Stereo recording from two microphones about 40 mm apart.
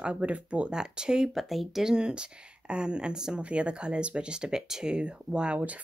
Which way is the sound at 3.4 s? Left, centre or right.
Right.